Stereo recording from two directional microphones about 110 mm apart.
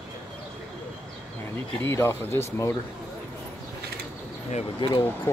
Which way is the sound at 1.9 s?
25° left (ahead or behind).